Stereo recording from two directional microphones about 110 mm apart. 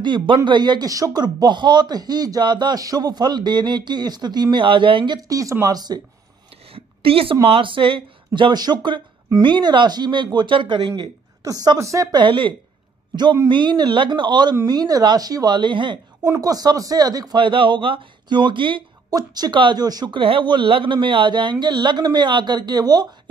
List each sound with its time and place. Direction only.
0.0 s speech: 45° right (ahead or behind)
5.3 s speech: 30° right (ahead or behind)
6.7 s a sound: 60° right (ahead or behind)
7.4 s speech: 55° right (ahead or behind)
8.4 s a woman's voice: 40° right (ahead or behind)
16.3 s speech: 35° right (ahead or behind)
19.0 s speech: 35° right (ahead or behind)
20.2 s speech: 50° right (ahead or behind)